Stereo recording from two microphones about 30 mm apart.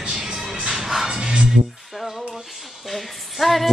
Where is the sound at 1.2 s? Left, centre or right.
Right.